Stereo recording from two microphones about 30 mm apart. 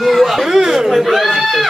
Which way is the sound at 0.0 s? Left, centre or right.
Centre.